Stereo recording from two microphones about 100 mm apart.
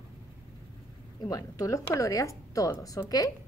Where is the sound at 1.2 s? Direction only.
35° left (ahead or behind).